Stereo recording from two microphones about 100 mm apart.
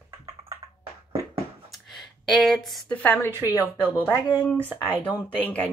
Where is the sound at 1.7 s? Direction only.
Centre (ahead or behind).